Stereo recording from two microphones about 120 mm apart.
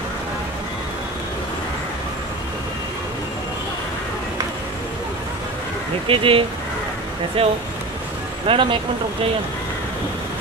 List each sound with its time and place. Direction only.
6.0 s speech: 50° right (ahead or behind)